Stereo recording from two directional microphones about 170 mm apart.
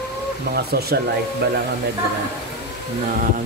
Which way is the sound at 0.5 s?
65° right (ahead or behind).